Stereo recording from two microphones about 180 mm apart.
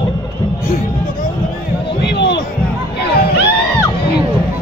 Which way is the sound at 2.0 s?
70° left (ahead or behind).